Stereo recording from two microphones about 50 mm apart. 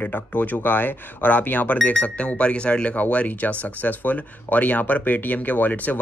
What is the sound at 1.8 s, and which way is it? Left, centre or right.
Speech, left.